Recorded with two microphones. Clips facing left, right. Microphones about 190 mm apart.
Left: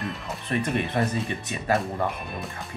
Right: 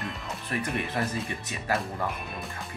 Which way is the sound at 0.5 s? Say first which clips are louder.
Left 5 dB; 25° left (ahead or behind).